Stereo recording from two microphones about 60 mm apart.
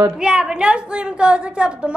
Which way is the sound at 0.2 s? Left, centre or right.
Centre.